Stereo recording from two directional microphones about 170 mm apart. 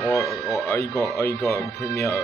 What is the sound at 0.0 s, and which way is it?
Speech, 20° left (ahead or behind).